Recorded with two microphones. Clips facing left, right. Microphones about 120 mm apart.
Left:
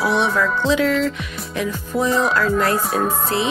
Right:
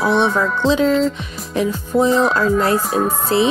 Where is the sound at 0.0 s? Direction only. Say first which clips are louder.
Right 3 dB; 5° left (ahead or behind).